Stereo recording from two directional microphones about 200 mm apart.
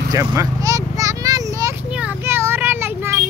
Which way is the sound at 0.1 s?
15° right (ahead or behind).